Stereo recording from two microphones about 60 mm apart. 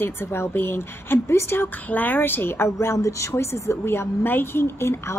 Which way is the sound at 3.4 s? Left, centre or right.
Left.